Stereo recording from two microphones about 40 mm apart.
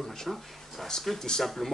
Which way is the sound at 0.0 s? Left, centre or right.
Centre.